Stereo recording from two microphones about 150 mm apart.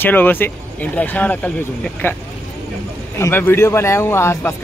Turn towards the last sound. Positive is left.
turn(degrees=15)  # may be behind; listen again after turning